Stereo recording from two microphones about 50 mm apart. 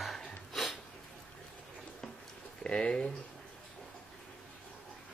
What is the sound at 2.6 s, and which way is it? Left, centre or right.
Speech, centre.